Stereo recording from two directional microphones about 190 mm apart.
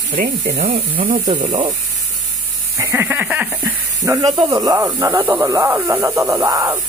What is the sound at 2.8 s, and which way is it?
Goat, 10° right (ahead or behind).